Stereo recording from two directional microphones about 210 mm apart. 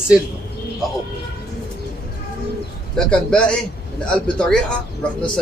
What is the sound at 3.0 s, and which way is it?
A man's voice, 5° left (ahead or behind).